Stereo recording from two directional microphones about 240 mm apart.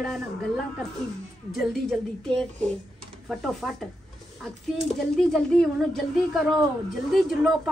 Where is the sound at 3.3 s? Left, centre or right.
Centre.